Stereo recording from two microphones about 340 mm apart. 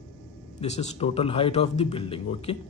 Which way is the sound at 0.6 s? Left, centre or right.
Centre.